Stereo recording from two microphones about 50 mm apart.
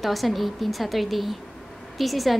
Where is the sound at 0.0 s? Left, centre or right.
Centre.